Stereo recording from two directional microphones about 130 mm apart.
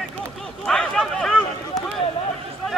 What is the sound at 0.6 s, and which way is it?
Speech, 5° left (ahead or behind).